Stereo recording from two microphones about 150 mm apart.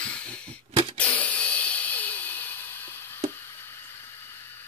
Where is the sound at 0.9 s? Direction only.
10° left (ahead or behind).